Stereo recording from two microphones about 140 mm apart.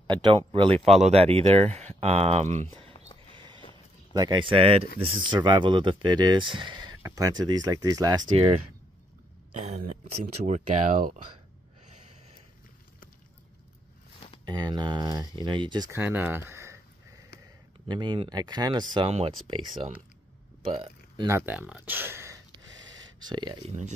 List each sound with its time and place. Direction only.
0.0 s speech: 35° right (ahead or behind)
0.8 s speech: 50° right (ahead or behind)
3.3 s a sound: 35° right (ahead or behind)
4.1 s speech: 30° right (ahead or behind)
7.0 s speech: 20° right (ahead or behind)
8.4 s speech: 45° right (ahead or behind); by 11.1 s 70° right (ahead or behind)
14.4 s speech: 30° right (ahead or behind)
15.9 s speech: 15° right (ahead or behind)
17.8 s speech: 35° right (ahead or behind)
18.9 s speech: 40° right (ahead or behind)
20.7 s speech: 40° right (ahead or behind)
21.3 s speech: 15° right (ahead or behind)
22.5 s a sound: 30° right (ahead or behind)